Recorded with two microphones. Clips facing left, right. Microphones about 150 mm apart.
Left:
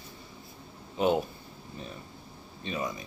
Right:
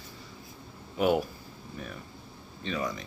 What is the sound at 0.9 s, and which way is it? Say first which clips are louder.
Speech: right 1 dB; 25° left (ahead or behind).